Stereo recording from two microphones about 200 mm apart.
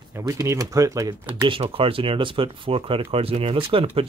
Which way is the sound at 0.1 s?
15° right (ahead or behind).